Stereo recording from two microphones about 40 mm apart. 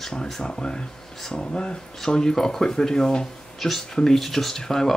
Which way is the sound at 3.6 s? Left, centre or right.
Centre.